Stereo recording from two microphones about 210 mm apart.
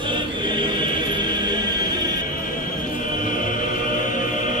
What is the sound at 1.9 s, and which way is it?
Music, 20° right (ahead or behind).